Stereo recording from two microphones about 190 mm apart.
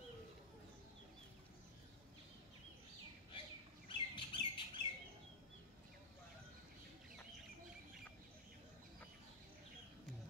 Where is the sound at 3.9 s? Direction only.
25° left (ahead or behind).